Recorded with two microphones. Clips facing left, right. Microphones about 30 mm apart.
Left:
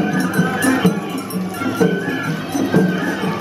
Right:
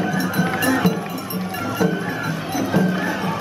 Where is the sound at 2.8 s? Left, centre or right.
Centre.